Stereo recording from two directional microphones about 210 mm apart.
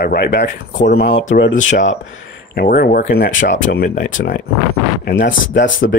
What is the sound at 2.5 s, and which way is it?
Speech, 45° left (ahead or behind).